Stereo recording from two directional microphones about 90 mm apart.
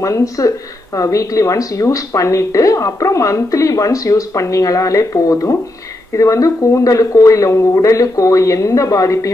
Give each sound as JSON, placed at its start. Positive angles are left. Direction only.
{"t": 0.0, "sound": "speech", "side_deg": 40}